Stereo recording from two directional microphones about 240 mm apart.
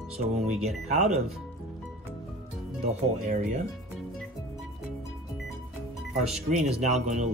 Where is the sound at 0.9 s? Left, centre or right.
Right.